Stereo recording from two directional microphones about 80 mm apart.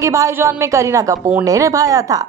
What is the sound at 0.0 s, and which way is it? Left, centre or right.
A woman's voice, right.